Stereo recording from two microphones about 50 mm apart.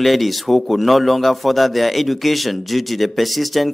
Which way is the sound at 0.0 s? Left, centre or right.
Centre.